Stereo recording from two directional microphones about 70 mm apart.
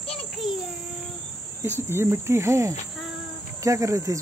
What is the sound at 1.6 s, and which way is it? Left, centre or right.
Cricket, right.